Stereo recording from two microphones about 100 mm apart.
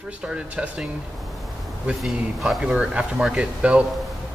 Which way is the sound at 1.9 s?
Centre (ahead or behind).